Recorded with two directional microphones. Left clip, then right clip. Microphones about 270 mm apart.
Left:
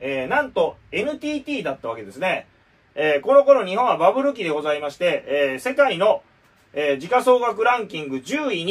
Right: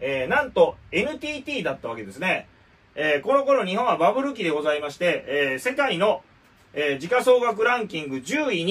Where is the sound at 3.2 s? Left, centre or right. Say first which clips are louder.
Left 8 dB; centre.